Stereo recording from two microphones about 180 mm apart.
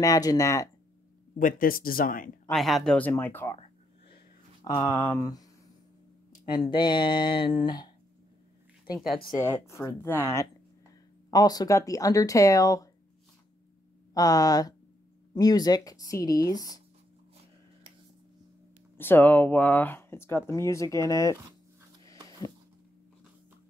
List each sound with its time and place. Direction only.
0.0 s speech: 20° left (ahead or behind)
1.3 s speech: 50° left (ahead or behind)
2.5 s speech: centre (ahead or behind)
3.5 s a sound: 35° left (ahead or behind)
4.6 s speech: 20° left (ahead or behind)
6.7 s speech: 25° left (ahead or behind)
9.7 s speech: 15° left (ahead or behind)
14.1 s speech: 20° left (ahead or behind)
18.9 s speech: 10° left (ahead or behind)